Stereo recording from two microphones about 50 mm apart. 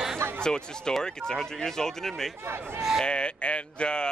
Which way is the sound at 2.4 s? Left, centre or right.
Right.